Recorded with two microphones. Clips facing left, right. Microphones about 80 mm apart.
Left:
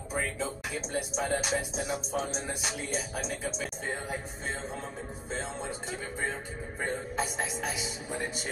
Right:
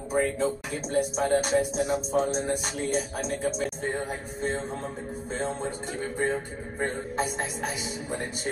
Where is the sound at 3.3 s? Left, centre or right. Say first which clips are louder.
Right 7 dB; right.